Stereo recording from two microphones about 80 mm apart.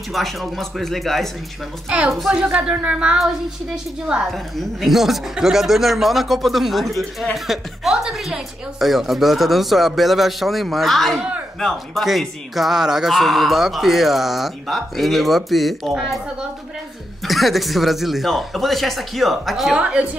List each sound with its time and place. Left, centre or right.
0.1 s a woman's voice: centre
4.3 s speech: centre
17.2 s speech: centre
19.8 s a woman's voice: centre